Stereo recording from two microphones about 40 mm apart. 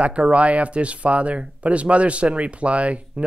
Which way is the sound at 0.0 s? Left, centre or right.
Right.